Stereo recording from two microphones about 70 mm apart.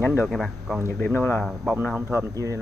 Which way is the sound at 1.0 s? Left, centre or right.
Left.